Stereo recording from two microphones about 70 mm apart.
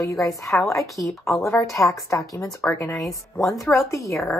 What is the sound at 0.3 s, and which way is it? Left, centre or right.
Speech, centre.